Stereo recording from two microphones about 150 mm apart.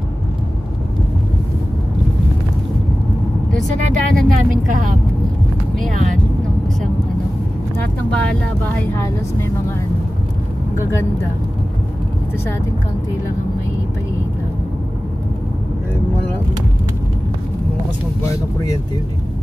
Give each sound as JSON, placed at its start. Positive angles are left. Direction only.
{"t": 3.6, "sound": "speech", "side_deg": -60}
{"t": 8.1, "sound": "speech", "side_deg": 10}
{"t": 10.8, "sound": "speech", "side_deg": 20}